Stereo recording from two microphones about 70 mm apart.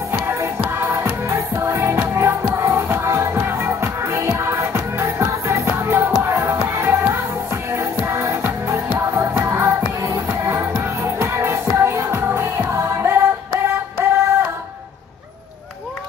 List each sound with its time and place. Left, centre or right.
0.2 s music: right